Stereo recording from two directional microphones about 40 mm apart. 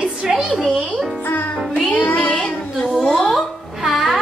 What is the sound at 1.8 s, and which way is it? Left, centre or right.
Music, left.